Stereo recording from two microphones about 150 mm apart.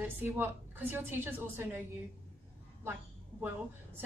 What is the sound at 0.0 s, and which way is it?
A woman's voice, 15° right (ahead or behind).